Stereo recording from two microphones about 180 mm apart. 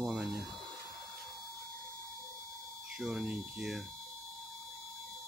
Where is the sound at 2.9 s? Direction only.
Centre (ahead or behind).